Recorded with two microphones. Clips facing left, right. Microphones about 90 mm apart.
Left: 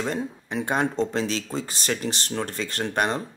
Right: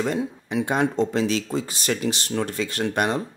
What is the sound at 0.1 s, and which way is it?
Speech, 40° left (ahead or behind).